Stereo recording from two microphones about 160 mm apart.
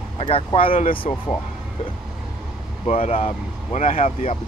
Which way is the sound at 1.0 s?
50° left (ahead or behind).